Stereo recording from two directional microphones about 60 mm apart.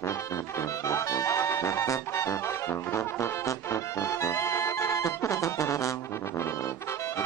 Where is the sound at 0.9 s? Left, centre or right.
Left.